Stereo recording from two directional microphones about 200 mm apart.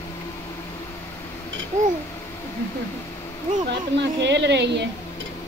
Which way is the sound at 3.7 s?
60° right (ahead or behind).